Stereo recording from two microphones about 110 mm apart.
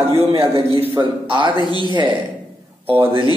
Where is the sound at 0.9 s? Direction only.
45° right (ahead or behind).